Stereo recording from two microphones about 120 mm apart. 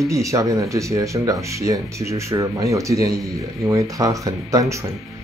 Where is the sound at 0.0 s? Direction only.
25° right (ahead or behind).